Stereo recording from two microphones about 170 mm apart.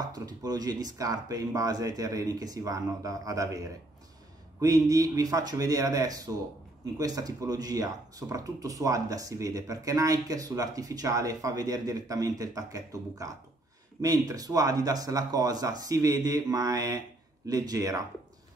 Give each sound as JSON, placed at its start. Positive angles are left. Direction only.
{"t": 0.1, "sound": "speech", "side_deg": -20}